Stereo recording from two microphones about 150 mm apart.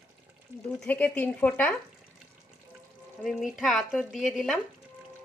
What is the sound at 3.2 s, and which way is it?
Speech, centre (ahead or behind).